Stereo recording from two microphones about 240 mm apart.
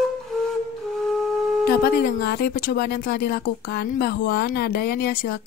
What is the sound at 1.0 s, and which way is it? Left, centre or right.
Music, centre.